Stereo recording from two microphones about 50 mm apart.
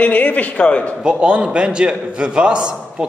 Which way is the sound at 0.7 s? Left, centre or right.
Left.